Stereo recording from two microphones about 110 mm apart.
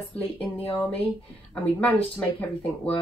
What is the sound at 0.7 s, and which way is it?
Speech, 15° left (ahead or behind).